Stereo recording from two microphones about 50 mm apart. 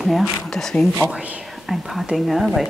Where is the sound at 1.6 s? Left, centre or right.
Centre.